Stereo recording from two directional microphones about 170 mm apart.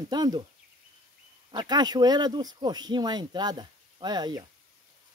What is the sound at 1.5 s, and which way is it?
Speech, 25° right (ahead or behind).